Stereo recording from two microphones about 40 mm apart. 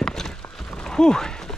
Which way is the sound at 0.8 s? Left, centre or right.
Centre.